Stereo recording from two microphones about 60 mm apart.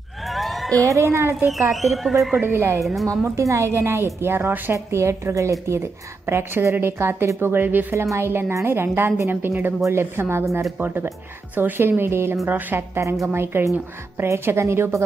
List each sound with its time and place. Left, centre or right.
0.3 s a sound: centre
0.8 s a woman's voice: right
1.5 s speech: centre
2.4 s a woman's voice: right
3.3 s a woman's voice: right
4.7 s a woman's voice: right
7.9 s a woman's voice: right
12.4 s a woman's voice: right